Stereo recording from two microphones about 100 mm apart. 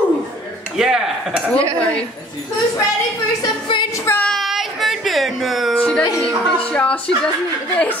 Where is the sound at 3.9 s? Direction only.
25° left (ahead or behind).